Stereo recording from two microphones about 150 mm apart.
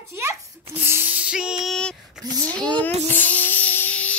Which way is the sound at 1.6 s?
5° left (ahead or behind).